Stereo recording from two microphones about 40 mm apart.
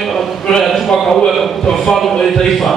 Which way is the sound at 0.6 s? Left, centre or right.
Centre.